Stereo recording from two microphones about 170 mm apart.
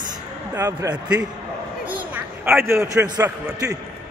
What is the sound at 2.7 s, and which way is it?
A man's voice, 15° right (ahead or behind).